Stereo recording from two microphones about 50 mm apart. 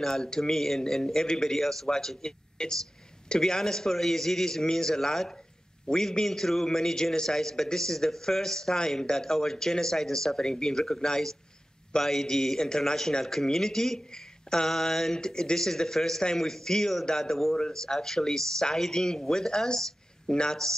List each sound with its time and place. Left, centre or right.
0.0 s a man's voice: centre